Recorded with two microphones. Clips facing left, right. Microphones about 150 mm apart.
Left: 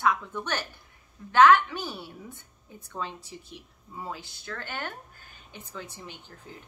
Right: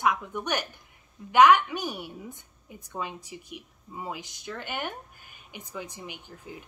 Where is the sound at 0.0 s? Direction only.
15° right (ahead or behind).